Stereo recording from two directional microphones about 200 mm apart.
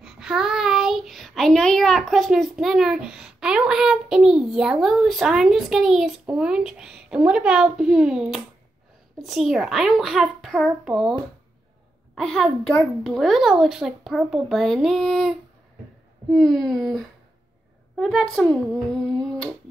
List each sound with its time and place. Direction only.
0.0 s a child's voice: 5° right (ahead or behind)
12.2 s a child's voice: centre (ahead or behind)
19.2 s a sound: 5° left (ahead or behind)